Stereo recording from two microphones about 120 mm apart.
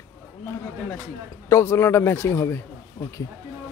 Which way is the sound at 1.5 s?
20° left (ahead or behind).